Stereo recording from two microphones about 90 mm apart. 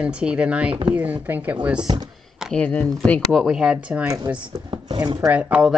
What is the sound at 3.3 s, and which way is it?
Speech, 5° right (ahead or behind).